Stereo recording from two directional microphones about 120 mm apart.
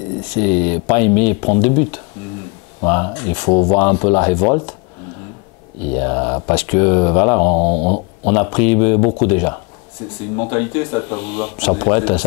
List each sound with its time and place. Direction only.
0.3 s speech: 10° left (ahead or behind)
2.8 s speech: 15° left (ahead or behind)
5.9 s speech: 20° left (ahead or behind)